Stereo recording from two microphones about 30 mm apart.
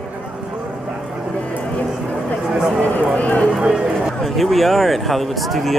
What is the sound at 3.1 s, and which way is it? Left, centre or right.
Run, left.